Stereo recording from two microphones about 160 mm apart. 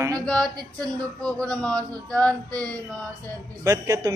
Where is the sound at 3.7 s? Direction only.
20° right (ahead or behind).